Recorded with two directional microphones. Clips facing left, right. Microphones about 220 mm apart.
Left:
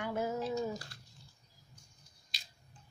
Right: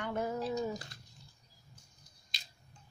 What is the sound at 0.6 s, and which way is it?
Speech, 20° right (ahead or behind).